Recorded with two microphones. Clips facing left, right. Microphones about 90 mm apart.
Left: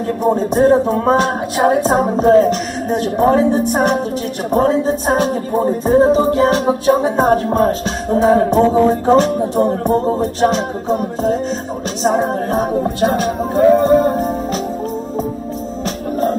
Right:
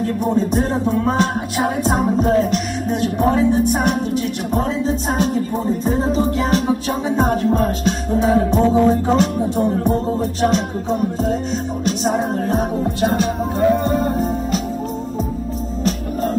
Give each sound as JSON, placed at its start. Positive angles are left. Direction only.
{"t": 0.0, "sound": "music", "side_deg": 35}
{"t": 12.0, "sound": "music", "side_deg": 35}